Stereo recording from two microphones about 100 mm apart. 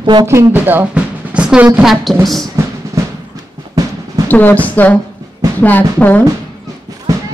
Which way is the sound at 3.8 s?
40° right (ahead or behind).